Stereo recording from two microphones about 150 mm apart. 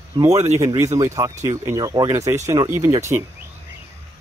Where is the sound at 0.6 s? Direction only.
20° right (ahead or behind).